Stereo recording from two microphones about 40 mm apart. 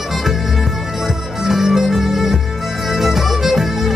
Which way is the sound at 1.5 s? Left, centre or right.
Centre.